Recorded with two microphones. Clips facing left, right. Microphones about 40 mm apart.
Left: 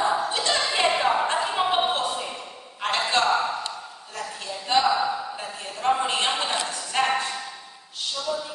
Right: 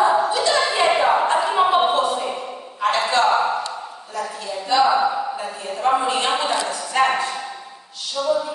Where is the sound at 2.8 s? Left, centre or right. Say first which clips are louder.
Right 5 dB; right.